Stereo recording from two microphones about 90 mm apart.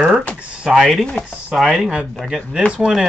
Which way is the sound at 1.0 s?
10° left (ahead or behind).